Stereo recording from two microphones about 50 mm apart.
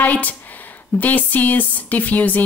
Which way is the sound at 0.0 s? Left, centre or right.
Left.